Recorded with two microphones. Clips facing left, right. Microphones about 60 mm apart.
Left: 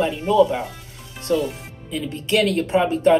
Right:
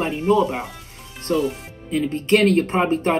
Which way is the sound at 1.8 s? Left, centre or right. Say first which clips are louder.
Right 6 dB; right.